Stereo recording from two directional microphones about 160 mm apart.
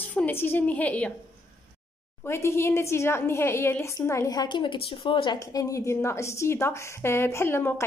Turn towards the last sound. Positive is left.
turn(degrees=15)  # may be behind; listen again after turning